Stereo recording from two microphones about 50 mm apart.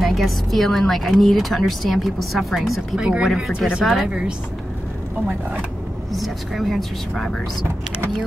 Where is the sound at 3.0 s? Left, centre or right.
Centre.